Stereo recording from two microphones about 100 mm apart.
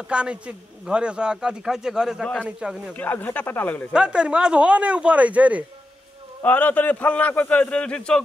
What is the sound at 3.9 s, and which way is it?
Speech, 10° right (ahead or behind).